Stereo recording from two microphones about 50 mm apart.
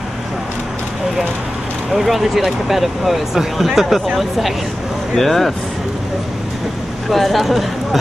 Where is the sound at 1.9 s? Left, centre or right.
Centre.